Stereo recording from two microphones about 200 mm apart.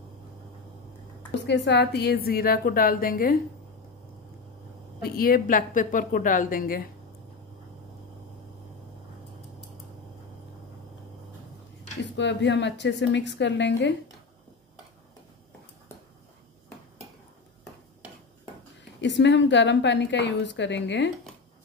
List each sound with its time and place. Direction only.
1.4 s a woman's voice: 60° left (ahead or behind)
5.0 s a woman's voice: 45° left (ahead or behind)
12.2 s a woman's voice: 60° left (ahead or behind)
18.9 s a woman's voice: 60° left (ahead or behind)